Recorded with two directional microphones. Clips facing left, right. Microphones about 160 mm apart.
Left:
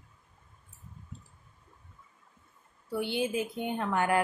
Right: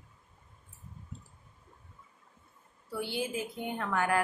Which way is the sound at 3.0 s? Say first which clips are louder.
Left 4 dB; 20° left (ahead or behind).